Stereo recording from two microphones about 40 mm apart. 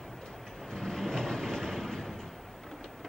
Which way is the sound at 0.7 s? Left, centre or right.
Centre.